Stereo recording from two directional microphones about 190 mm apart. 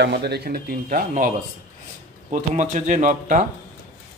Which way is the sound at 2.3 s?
40° right (ahead or behind).